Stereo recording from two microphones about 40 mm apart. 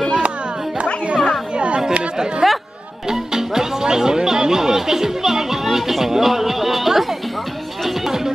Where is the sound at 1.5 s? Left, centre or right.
Right.